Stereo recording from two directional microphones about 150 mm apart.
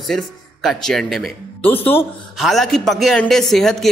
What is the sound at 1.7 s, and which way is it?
Speech, 15° left (ahead or behind).